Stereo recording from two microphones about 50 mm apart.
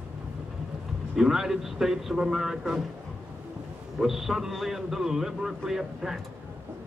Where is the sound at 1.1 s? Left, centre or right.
Centre.